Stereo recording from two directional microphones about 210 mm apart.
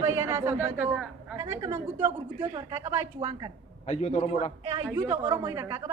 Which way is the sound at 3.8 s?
30° left (ahead or behind).